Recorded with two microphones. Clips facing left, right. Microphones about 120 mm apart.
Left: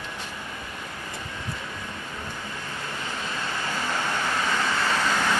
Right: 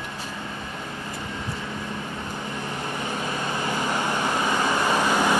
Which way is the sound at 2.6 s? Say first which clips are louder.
Right 6 dB; 20° right (ahead or behind).